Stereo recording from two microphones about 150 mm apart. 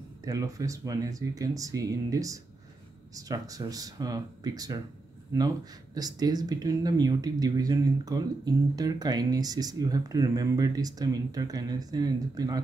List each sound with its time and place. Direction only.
0.2 s speech: 25° right (ahead or behind)
5.9 s speech: 25° right (ahead or behind)